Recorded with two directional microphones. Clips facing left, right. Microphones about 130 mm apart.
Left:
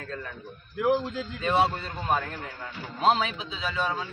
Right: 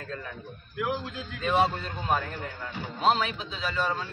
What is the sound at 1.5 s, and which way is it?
A man's voice, 10° left (ahead or behind).